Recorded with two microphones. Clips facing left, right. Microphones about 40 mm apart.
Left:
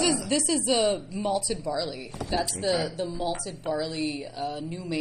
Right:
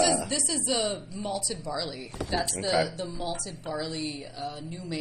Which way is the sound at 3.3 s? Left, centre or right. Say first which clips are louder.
Left 4 dB; left.